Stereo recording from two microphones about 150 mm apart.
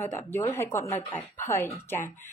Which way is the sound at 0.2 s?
15° left (ahead or behind).